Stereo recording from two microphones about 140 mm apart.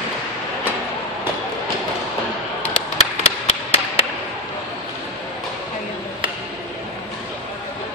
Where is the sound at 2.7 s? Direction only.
45° left (ahead or behind).